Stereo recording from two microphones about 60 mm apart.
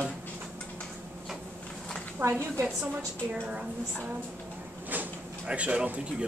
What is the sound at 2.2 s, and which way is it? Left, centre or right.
Speech, right.